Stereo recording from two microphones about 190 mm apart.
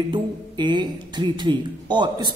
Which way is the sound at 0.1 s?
25° right (ahead or behind).